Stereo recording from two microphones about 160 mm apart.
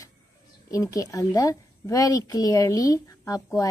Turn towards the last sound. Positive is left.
turn(degrees=20)  # may be behind; listen again after turning